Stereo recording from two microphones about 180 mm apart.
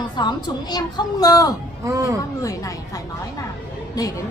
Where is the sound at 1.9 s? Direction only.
15° right (ahead or behind).